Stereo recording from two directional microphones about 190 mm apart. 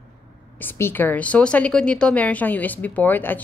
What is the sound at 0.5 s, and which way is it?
Speech, 10° left (ahead or behind).